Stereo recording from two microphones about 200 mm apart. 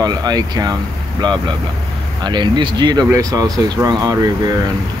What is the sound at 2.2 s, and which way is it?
Speech, 20° right (ahead or behind).